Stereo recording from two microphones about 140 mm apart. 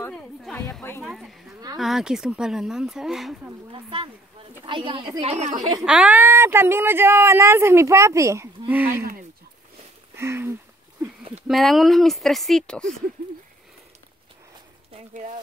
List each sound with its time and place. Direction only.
0.1 s a sound: 5° left (ahead or behind)
1.0 s speech: centre (ahead or behind)
3.7 s speech: 40° right (ahead or behind)
5.2 s a woman's voice: 55° right (ahead or behind)
5.9 s speech: 10° right (ahead or behind)
10.1 s a sound: 20° right (ahead or behind)
11.4 s speech: centre (ahead or behind)